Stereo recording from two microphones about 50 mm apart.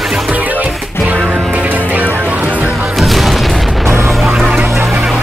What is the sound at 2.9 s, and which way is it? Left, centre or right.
Music, centre.